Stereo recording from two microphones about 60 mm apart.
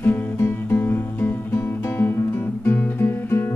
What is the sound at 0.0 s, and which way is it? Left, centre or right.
Music, left.